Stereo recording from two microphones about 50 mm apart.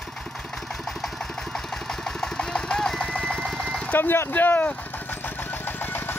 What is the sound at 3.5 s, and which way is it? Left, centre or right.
Sewing machine, centre.